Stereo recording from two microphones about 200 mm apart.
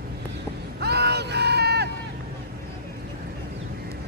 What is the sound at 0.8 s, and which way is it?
Vehicle, 55° right (ahead or behind).